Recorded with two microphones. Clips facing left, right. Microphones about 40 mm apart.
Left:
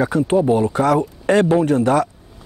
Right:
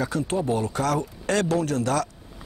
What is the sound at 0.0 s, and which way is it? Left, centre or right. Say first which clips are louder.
Speech: left 9 dB; left.